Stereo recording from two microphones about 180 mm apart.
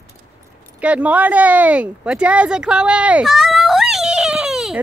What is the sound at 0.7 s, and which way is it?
Speech, 5° right (ahead or behind).